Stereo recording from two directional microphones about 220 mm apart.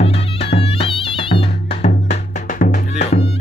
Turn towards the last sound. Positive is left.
turn(degrees=30)  # may be behind; listen again after turning